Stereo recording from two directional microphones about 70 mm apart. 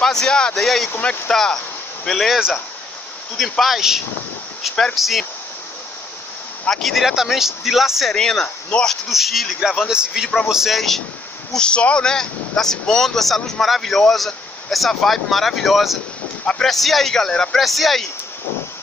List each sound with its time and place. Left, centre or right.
0.0 s a man's voice: centre
0.9 s speech: left
1.3 s a man's voice: centre
6.7 s a man's voice: centre
9.1 s speech: centre
11.5 s speech: centre